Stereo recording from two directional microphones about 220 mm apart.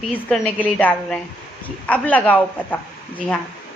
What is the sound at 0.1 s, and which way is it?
A woman's voice, 5° left (ahead or behind).